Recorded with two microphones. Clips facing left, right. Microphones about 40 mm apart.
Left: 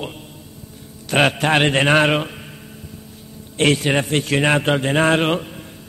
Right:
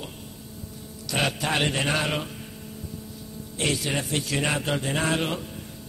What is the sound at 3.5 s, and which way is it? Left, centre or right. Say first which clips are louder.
A man's voice: left 10 dB; left.